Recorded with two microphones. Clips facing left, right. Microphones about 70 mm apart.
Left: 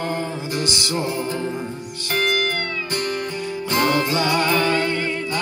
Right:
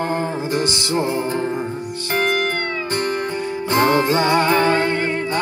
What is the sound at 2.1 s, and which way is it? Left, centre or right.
Music, right.